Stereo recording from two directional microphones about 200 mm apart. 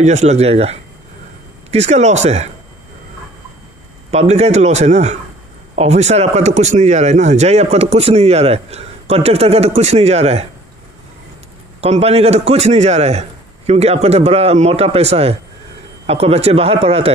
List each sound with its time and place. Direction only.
0.0 s speech: 35° right (ahead or behind)
4.1 s speech: 35° right (ahead or behind)
11.8 s speech: 30° right (ahead or behind)